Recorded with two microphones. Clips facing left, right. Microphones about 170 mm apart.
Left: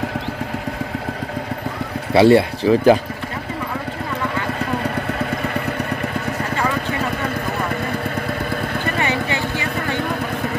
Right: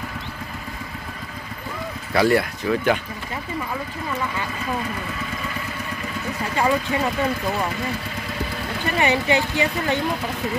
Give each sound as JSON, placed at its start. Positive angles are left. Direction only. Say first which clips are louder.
{"t": 2.1, "sound": "speech", "louder": "left 7 dB", "side_deg": 30}
{"t": 5.2, "sound": "vehicle", "louder": "left 8 dB", "side_deg": 60}
{"t": 9.0, "sound": "a sound", "louder": "right 2 dB", "side_deg": -20}